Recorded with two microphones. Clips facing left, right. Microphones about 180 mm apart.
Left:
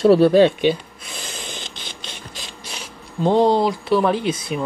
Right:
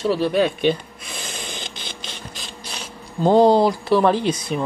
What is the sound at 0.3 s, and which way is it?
Speech, 30° left (ahead or behind).